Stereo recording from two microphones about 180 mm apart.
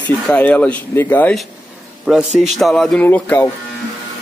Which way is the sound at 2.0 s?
Centre (ahead or behind).